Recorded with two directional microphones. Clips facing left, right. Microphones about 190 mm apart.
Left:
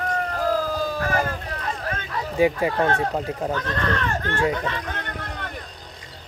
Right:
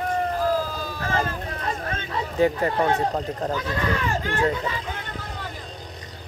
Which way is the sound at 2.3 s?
10° left (ahead or behind).